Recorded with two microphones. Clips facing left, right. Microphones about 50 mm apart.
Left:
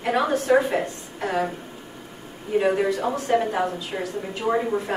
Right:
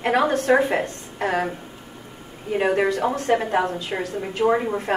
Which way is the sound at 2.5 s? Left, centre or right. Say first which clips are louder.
Right 1 dB; right.